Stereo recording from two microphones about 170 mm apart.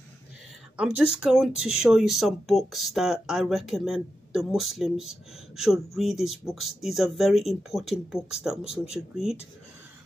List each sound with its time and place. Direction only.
0.7 s speech: 5° right (ahead or behind)